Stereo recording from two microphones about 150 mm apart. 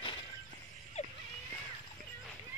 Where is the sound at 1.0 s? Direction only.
45° left (ahead or behind).